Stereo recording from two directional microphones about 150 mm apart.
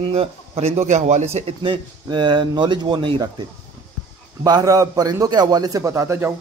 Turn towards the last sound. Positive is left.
turn(degrees=-20)  # may be behind; listen again after turning